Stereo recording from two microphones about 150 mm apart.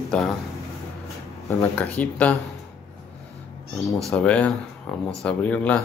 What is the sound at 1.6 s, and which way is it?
Speech, 10° left (ahead or behind).